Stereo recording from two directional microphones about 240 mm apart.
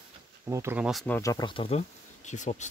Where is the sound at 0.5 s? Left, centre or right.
Centre.